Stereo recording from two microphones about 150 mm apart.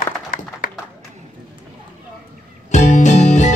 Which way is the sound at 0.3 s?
60° left (ahead or behind).